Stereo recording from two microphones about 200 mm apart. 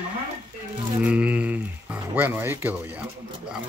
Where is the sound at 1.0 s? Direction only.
5° right (ahead or behind).